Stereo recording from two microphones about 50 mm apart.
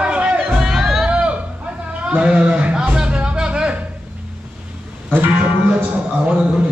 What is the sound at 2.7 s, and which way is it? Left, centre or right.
Music, centre.